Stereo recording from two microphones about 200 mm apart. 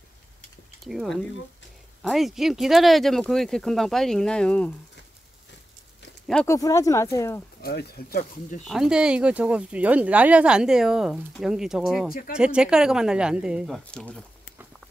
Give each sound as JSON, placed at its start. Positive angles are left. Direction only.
{"t": 0.8, "sound": "speech", "side_deg": 0}
{"t": 6.4, "sound": "speech", "side_deg": 15}
{"t": 7.6, "sound": "speech", "side_deg": 50}
{"t": 8.2, "sound": "speech", "side_deg": 35}
{"t": 8.6, "sound": "speech", "side_deg": 0}